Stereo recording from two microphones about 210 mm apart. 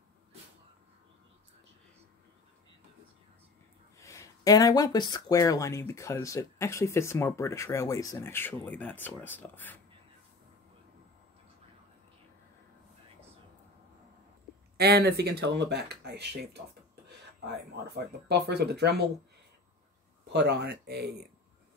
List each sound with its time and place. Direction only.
4.0 s speech: 15° left (ahead or behind)
14.8 s speech: 50° right (ahead or behind)
18.3 s speech: 50° right (ahead or behind)
20.3 s speech: 55° right (ahead or behind)